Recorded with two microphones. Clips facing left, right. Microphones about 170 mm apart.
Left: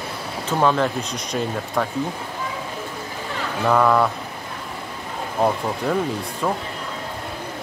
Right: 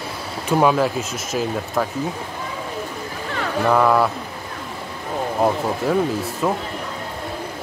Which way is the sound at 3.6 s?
5° right (ahead or behind).